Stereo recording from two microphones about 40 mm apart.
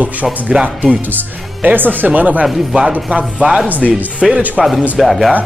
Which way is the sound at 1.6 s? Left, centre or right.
Right.